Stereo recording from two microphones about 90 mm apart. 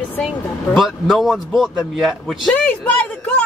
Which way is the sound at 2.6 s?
20° left (ahead or behind).